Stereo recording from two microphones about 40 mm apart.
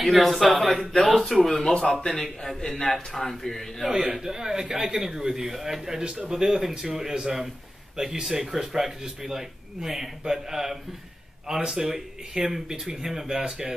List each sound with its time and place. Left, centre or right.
0.0 s speech: centre
1.2 s a man's voice: centre
1.6 s speech: left
2.6 s a man's voice: centre
3.9 s speech: centre